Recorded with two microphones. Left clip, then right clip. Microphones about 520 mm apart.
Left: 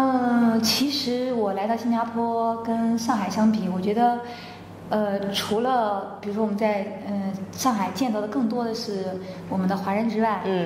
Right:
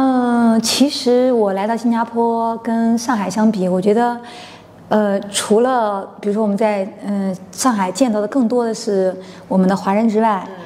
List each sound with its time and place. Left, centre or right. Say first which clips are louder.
0.0 s speech: right 6 dB; right